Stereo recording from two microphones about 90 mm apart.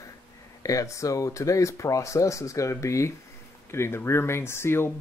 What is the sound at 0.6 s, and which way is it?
Speech, 40° left (ahead or behind).